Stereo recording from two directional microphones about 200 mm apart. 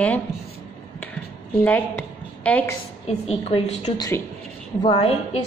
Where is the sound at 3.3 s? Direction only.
30° left (ahead or behind).